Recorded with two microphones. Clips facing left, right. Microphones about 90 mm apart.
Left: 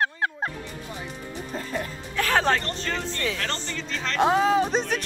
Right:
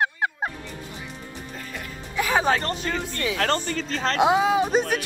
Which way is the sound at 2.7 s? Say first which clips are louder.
Right 2 dB; 10° right (ahead or behind).